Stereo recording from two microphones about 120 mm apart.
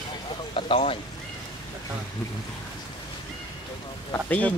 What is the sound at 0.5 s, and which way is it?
Speech, 50° left (ahead or behind).